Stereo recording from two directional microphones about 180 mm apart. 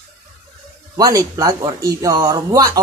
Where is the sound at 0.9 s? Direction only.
20° right (ahead or behind).